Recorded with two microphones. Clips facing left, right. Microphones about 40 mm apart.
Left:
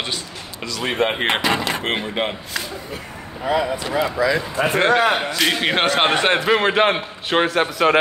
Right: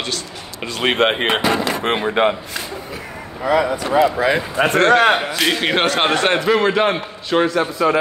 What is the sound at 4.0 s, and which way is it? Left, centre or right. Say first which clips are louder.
Speech: right 2 dB; right.